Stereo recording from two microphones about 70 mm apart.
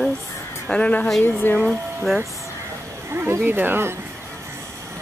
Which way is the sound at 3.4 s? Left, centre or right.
Right.